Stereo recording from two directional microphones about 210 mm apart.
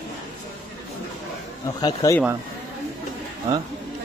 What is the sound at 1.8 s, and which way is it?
Speech, 20° left (ahead or behind).